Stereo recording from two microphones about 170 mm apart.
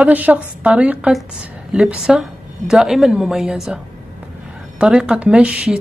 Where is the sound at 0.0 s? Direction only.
10° right (ahead or behind).